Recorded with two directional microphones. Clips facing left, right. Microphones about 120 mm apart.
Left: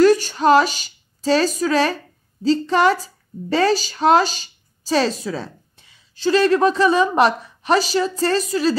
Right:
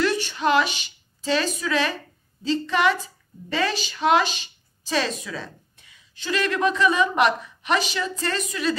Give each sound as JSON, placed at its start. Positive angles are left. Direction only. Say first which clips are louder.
{"t": 0.0, "sound": "a woman's voice", "louder": "left 9 dB", "side_deg": 40}